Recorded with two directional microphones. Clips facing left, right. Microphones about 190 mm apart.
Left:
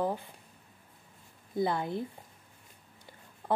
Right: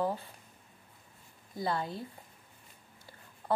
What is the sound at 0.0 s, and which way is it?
Speech, 15° left (ahead or behind).